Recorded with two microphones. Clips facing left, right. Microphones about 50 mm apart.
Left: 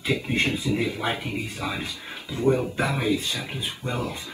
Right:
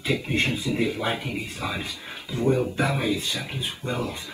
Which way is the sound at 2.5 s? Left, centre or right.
Centre.